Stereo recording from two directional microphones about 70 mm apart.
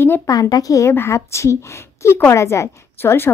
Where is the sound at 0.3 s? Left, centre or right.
Left.